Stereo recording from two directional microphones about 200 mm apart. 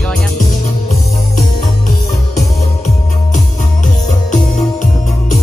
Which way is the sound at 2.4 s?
35° left (ahead or behind).